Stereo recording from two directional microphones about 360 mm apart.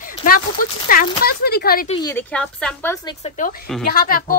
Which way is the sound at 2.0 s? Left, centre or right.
Centre.